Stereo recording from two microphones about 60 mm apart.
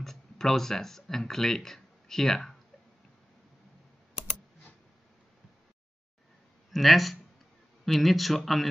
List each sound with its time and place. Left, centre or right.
0.0 s speech: centre
6.7 s a man's voice: centre